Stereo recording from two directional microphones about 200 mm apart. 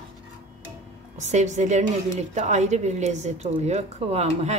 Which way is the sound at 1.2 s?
35° right (ahead or behind).